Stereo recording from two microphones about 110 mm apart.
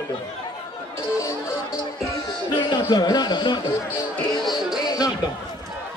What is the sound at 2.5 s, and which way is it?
Speech, 40° left (ahead or behind).